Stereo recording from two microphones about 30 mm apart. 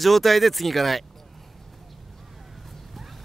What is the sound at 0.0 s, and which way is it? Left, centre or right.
Speech, centre.